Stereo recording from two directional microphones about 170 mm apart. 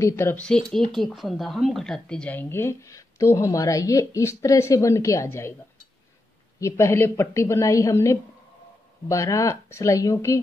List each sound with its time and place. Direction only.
0.0 s speech: 15° left (ahead or behind)
6.6 s speech: 15° left (ahead or behind)